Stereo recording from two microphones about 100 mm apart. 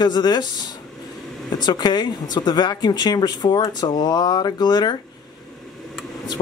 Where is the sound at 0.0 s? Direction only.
45° left (ahead or behind).